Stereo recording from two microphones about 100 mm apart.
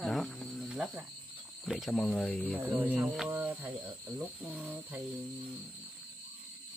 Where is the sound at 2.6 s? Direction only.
20° right (ahead or behind).